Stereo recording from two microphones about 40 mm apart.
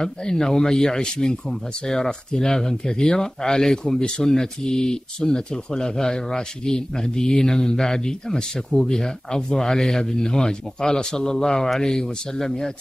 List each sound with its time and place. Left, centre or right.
0.0 s speech: centre